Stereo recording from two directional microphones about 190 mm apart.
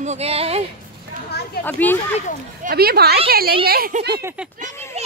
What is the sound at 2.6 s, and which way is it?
Speech, 50° right (ahead or behind).